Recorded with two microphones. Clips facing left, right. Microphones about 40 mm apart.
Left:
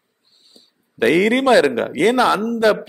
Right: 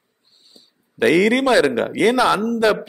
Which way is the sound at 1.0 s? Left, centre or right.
Centre.